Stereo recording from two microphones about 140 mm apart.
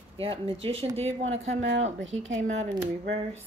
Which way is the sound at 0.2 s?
40° right (ahead or behind).